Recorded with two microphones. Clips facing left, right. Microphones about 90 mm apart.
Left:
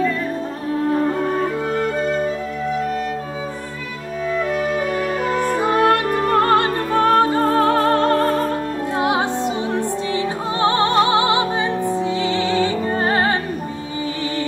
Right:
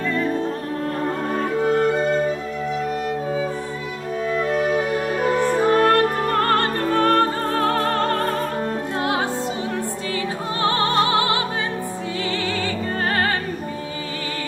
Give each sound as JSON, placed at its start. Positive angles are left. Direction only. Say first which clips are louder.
{"t": 5.6, "sound": "music", "louder": "even", "side_deg": 15}
{"t": 9.7, "sound": "music", "louder": "left 5 dB", "side_deg": 20}
{"t": 12.4, "sound": "music", "louder": "left 6 dB", "side_deg": 20}